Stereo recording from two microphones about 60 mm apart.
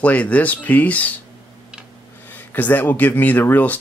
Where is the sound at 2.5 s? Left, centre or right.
Left.